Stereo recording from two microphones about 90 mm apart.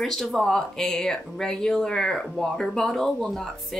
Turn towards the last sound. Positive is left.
turn(degrees=5)  # may be behind; listen again after turning